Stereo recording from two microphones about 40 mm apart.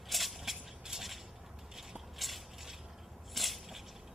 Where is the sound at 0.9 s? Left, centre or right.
Centre.